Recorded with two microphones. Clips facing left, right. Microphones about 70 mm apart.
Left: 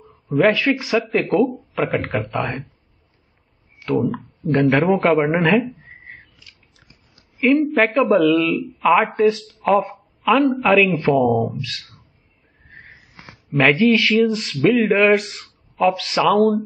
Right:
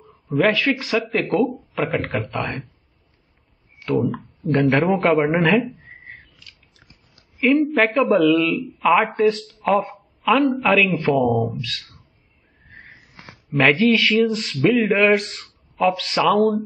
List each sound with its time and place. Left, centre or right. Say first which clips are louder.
0.0 s a sound: left 2 dB; centre
0.5 s speech: left 2 dB; centre
1.0 s speech: left 2 dB; centre
2.3 s speech: left 2 dB; centre
3.8 s speech: left 1 dB; centre
6.4 s biting: right 1 dB; centre
7.3 s speech: left 1 dB; centre
13.5 s speech: left 1 dB; centre
16.3 s speech: left 2 dB; centre